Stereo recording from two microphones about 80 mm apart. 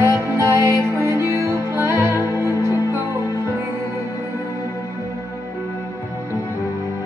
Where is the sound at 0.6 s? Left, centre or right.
Right.